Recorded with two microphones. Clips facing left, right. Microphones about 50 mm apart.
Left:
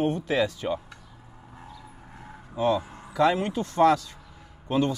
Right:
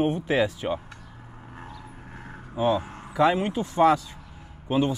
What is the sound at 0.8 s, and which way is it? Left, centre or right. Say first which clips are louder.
Vehicle: right 3 dB; right.